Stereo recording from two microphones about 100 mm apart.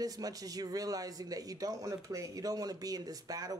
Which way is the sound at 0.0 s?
40° right (ahead or behind).